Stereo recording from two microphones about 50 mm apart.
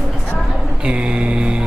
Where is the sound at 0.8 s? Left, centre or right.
Right.